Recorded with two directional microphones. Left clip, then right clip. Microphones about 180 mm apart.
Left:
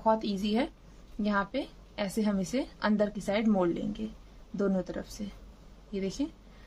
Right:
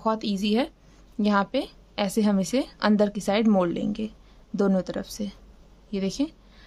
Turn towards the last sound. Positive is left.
turn(degrees=-45)  # may be behind; listen again after turning